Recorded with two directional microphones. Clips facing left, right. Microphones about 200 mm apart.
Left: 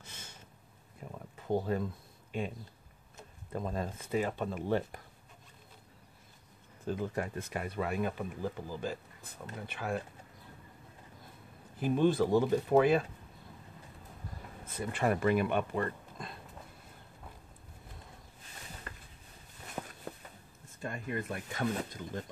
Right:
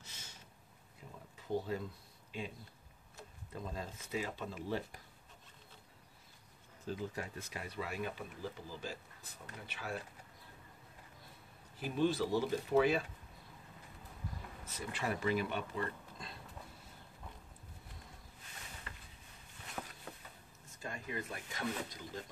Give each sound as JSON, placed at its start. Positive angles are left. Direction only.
{"t": 0.0, "sound": "a sound", "side_deg": 55}
{"t": 1.3, "sound": "speech", "side_deg": 55}
{"t": 3.5, "sound": "speech", "side_deg": 55}
{"t": 6.9, "sound": "speech", "side_deg": 55}
{"t": 11.8, "sound": "speech", "side_deg": 50}
{"t": 14.7, "sound": "speech", "side_deg": 55}
{"t": 18.9, "sound": "a sound", "side_deg": 45}
{"t": 19.8, "sound": "a sound", "side_deg": 35}
{"t": 20.8, "sound": "speech", "side_deg": 55}